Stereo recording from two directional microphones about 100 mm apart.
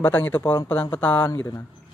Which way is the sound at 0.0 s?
20° left (ahead or behind).